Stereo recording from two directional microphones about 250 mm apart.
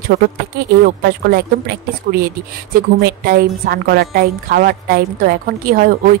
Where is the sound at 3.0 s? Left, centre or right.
Right.